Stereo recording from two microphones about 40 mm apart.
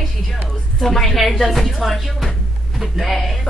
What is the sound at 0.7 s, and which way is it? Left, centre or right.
Speech, centre.